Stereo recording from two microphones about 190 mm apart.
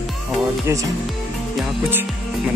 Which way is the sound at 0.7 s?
15° right (ahead or behind).